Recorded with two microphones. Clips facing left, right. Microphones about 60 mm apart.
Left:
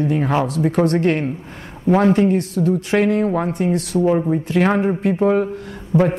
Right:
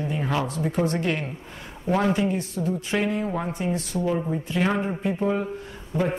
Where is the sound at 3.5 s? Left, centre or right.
Left.